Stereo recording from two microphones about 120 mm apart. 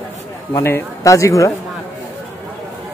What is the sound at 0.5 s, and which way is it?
Speech, 20° left (ahead or behind).